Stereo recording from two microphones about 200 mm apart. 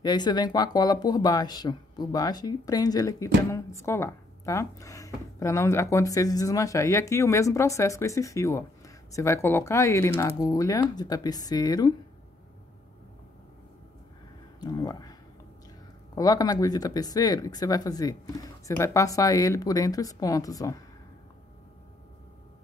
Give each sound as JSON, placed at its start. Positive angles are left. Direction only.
{"t": 0.0, "sound": "speech", "side_deg": 20}
{"t": 14.6, "sound": "speech", "side_deg": 20}
{"t": 16.2, "sound": "speech", "side_deg": 20}